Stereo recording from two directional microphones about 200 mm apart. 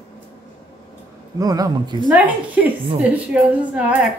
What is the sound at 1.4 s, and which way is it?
Speech, 20° right (ahead or behind).